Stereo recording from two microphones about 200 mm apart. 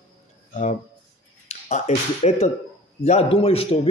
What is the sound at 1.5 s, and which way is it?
Speech, 35° left (ahead or behind).